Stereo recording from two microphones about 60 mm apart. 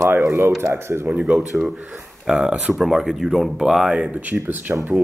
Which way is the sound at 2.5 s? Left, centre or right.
Centre.